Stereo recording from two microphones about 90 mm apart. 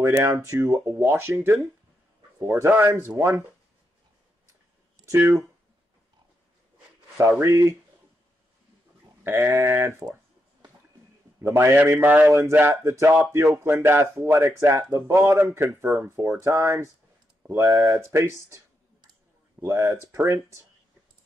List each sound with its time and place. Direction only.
0.0 s speech: 35° right (ahead or behind)
2.3 s a man's voice: 30° right (ahead or behind)
5.0 s speech: 35° right (ahead or behind)
7.2 s speech: 30° right (ahead or behind)
9.2 s sheep: 25° right (ahead or behind)
9.5 s speech: 30° right (ahead or behind)
11.4 s speech: 25° right (ahead or behind)
12.7 s speech: 35° right (ahead or behind)
13.1 s speech: 20° right (ahead or behind)
13.4 s speech: 35° right (ahead or behind)
19.6 s speech: 30° right (ahead or behind)